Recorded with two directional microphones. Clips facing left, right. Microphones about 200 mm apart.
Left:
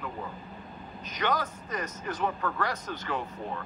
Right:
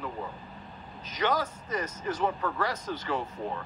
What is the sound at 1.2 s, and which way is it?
Speech, 10° right (ahead or behind).